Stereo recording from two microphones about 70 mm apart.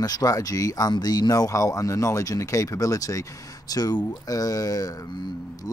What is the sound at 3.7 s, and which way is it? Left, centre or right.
Speech, left.